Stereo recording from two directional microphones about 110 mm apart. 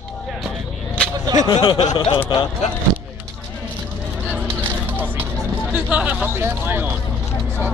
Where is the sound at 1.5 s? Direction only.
45° left (ahead or behind).